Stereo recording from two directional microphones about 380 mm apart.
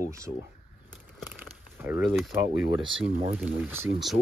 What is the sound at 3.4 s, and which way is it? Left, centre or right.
Speech, centre.